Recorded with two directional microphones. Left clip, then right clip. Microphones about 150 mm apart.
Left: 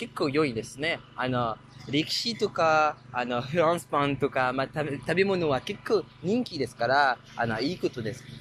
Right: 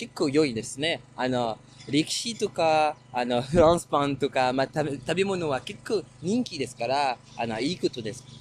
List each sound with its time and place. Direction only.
0.0 s speech: 35° right (ahead or behind)
5.0 s speech: 15° right (ahead or behind)